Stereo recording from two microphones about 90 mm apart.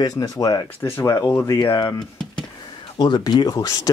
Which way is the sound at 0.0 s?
40° left (ahead or behind).